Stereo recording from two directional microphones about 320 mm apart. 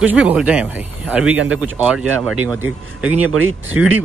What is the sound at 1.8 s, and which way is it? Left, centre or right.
Speech, centre.